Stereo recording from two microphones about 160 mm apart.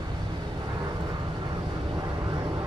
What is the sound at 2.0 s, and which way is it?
Vehicle, 20° right (ahead or behind).